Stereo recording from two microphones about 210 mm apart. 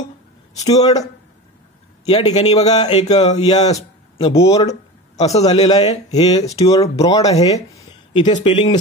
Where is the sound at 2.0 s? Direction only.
25° left (ahead or behind).